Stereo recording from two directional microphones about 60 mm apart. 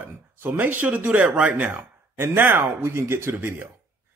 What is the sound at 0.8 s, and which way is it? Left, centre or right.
A man's voice, right.